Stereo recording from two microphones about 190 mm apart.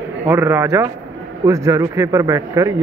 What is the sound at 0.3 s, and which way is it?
A man's voice, 15° right (ahead or behind).